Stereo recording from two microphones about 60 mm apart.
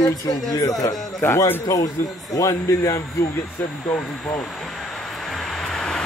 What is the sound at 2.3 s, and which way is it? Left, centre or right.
Speech, left.